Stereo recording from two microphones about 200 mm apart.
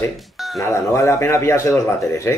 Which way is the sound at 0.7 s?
15° left (ahead or behind).